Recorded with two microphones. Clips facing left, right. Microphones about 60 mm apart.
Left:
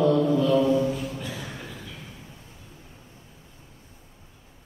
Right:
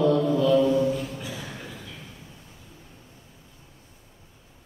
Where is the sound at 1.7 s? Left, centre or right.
Centre.